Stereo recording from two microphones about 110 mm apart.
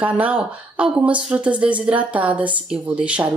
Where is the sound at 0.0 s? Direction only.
15° right (ahead or behind).